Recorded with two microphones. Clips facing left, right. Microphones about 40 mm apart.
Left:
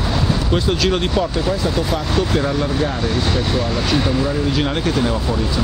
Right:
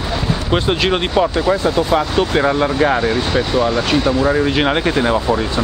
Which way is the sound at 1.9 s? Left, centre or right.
Right.